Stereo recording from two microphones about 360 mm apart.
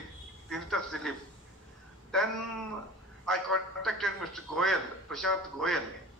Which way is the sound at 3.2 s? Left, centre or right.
Centre.